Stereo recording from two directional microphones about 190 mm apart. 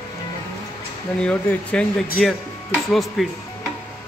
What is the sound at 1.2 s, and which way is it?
Speech, 5° left (ahead or behind).